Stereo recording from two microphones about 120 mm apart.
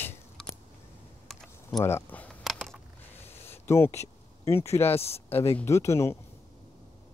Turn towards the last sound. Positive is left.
turn(degrees=25)  # may be behind; listen again after turning